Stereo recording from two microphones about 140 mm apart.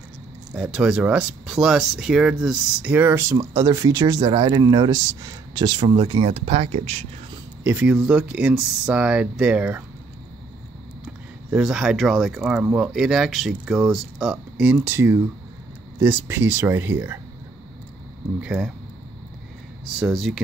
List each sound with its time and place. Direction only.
0.6 s speech: 5° right (ahead or behind)
3.3 s speech: 25° right (ahead or behind); by 7.1 s 55° right (ahead or behind)
7.6 s speech: 10° right (ahead or behind)
11.5 s speech: 5° right (ahead or behind)
18.4 s speech: 5° right (ahead or behind)
19.9 s speech: centre (ahead or behind)